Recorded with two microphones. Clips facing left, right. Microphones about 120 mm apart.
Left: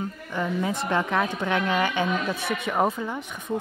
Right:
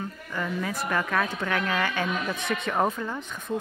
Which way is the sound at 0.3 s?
20° left (ahead or behind).